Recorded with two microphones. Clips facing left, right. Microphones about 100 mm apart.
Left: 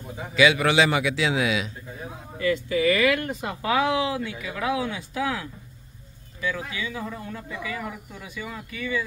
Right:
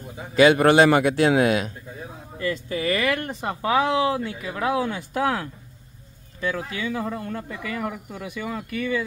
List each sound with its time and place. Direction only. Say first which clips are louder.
0.4 s speech: right 5 dB; 45° right (ahead or behind)
2.4 s speech: left 3 dB; 35° right (ahead or behind); by 8.9 s 55° right (ahead or behind)